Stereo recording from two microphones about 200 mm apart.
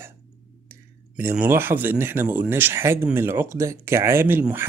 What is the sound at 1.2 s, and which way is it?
Speech, 10° right (ahead or behind).